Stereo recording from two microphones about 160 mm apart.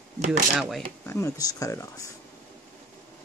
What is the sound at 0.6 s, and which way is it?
Speech, centre (ahead or behind).